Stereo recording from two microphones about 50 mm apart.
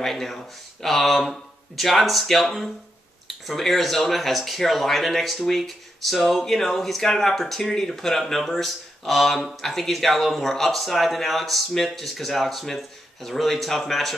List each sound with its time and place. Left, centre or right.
0.0 s speech: centre